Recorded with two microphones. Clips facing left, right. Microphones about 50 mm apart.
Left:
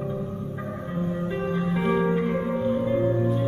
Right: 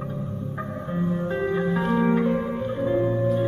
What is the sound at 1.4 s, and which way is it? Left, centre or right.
Music, centre.